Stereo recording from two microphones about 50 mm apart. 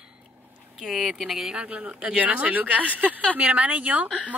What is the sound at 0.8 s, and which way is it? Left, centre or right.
Speech, centre.